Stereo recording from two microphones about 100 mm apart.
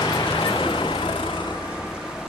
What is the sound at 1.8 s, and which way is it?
Vehicle, 5° right (ahead or behind).